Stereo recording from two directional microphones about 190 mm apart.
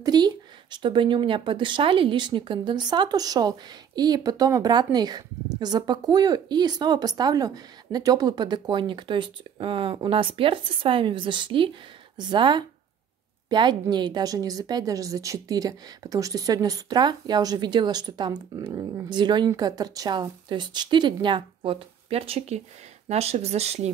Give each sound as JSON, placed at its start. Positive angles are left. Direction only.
{"t": 0.0, "sound": "speech", "side_deg": -20}